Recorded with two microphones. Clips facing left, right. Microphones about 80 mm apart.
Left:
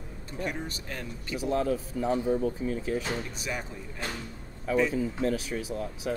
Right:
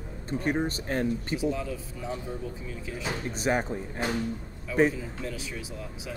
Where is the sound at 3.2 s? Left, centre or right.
Right.